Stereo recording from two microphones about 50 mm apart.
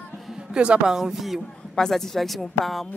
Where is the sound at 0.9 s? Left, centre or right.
Centre.